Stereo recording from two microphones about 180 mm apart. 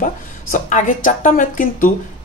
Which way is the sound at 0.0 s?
45° left (ahead or behind).